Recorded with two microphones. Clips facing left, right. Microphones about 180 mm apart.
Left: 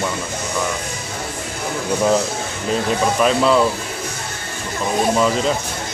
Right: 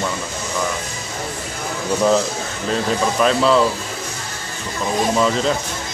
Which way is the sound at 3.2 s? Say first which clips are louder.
Even; 5° left (ahead or behind).